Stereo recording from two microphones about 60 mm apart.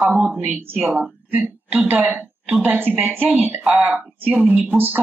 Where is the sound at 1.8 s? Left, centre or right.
Right.